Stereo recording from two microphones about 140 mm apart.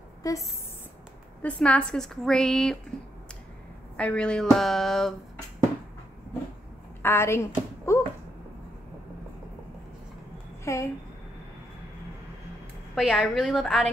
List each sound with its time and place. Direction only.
0.2 s speech: 25° left (ahead or behind)
1.4 s a woman's voice: 10° left (ahead or behind)
3.9 s a woman's voice: 10° left (ahead or behind)
7.0 s a sound: 15° left (ahead or behind)
10.6 s a woman's voice: 20° left (ahead or behind)
12.9 s a woman's voice: 5° right (ahead or behind)